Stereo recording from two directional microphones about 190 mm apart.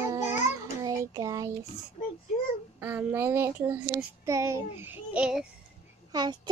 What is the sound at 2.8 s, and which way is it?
Child singing, 10° right (ahead or behind).